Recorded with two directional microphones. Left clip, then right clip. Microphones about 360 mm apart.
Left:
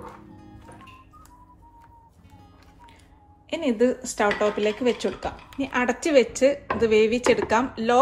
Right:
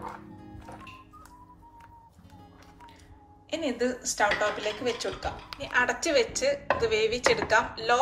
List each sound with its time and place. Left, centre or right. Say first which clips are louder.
3.4 s speech: left 6 dB; centre